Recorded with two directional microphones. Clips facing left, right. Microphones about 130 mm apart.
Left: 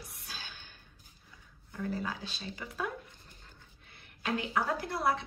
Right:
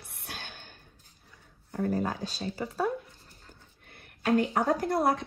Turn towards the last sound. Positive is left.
turn(degrees=-45)  # may be behind; listen again after turning